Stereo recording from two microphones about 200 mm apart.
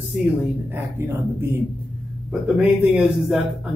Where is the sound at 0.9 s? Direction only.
10° right (ahead or behind).